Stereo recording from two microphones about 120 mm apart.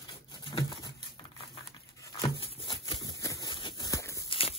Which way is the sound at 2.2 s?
45° left (ahead or behind).